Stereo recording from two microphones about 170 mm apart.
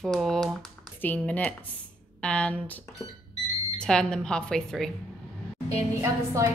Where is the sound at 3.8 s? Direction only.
5° left (ahead or behind).